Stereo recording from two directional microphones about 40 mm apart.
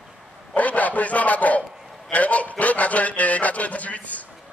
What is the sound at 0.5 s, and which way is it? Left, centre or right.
A man's voice, left.